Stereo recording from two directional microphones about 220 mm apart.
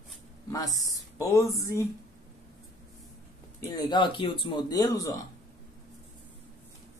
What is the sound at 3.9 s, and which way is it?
Speech, 20° left (ahead or behind).